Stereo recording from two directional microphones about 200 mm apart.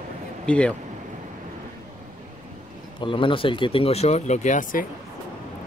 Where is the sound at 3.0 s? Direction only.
25° left (ahead or behind); by 4.8 s 40° left (ahead or behind).